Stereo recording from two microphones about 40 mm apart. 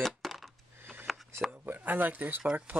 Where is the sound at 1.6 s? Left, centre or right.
Right.